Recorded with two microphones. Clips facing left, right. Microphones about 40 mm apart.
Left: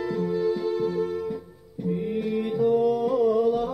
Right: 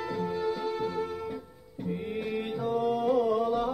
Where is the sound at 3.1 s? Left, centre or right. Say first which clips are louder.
Left 5 dB; right.